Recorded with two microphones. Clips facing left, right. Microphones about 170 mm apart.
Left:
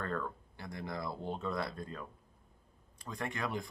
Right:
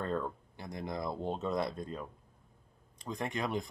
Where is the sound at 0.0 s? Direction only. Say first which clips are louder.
Right 3 dB; 20° right (ahead or behind).